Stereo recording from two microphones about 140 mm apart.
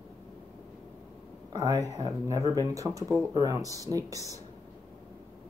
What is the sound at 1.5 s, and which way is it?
Speech, 25° right (ahead or behind).